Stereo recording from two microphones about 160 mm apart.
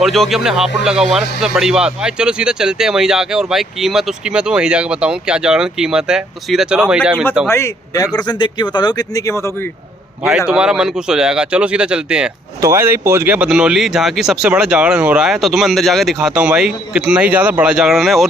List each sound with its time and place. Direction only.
0.0 s speech: centre (ahead or behind)
7.4 s speech: 15° left (ahead or behind)
10.5 s speech: 5° right (ahead or behind)